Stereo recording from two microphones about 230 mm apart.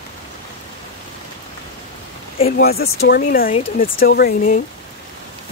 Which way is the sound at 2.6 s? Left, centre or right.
Left.